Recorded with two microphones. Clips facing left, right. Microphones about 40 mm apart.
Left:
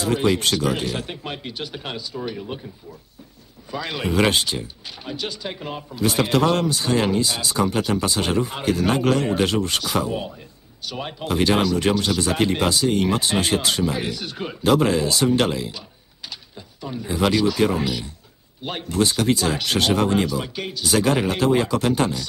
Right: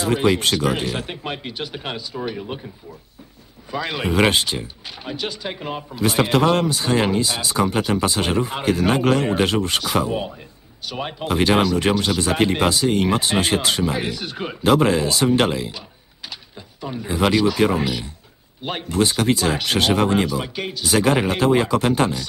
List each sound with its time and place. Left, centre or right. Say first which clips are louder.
0.0 s speech: right 2 dB; right
3.7 s speech: right 2 dB; right